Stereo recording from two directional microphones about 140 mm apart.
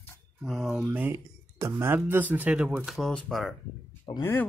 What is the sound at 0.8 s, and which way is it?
Speech, 15° right (ahead or behind).